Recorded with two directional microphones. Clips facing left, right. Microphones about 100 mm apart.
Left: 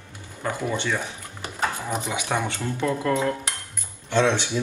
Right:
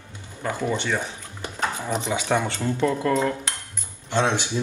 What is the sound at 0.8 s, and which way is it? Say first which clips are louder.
Speech: right 1 dB; 20° right (ahead or behind).